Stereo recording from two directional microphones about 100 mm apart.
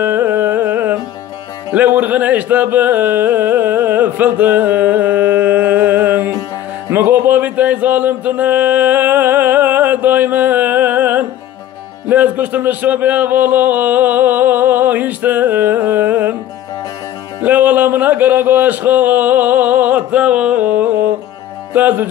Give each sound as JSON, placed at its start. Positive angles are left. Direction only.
{"t": 0.0, "sound": "carnatic music", "side_deg": -20}
{"t": 1.7, "sound": "music", "side_deg": -15}
{"t": 17.4, "sound": "music", "side_deg": -15}